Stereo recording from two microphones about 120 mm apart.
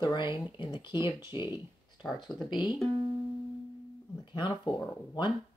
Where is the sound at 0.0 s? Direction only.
40° left (ahead or behind).